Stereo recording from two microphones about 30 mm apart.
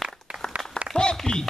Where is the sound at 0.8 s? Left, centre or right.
Left.